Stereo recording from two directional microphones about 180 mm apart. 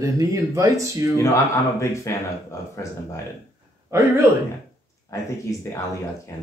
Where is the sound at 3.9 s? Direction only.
15° right (ahead or behind).